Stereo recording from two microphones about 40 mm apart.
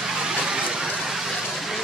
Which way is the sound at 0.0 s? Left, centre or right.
Centre.